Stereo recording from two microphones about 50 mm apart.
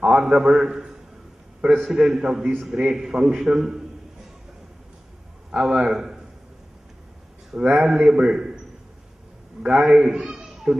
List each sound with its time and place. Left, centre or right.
0.0 s a sound: centre
1.8 s a man's voice: centre
5.5 s a man's voice: centre
7.7 s a man's voice: centre
9.6 s a man's voice: centre
10.0 s a sound: centre